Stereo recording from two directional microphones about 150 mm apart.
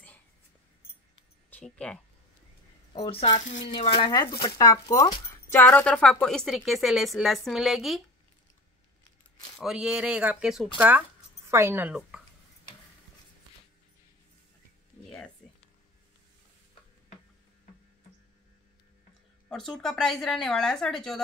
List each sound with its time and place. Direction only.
1.5 s speech: 5° left (ahead or behind)
2.9 s speech: 40° left (ahead or behind)
3.7 s speech: 30° left (ahead or behind); by 8.0 s centre (ahead or behind)
9.6 s speech: 5° right (ahead or behind)
19.5 s speech: 5° left (ahead or behind)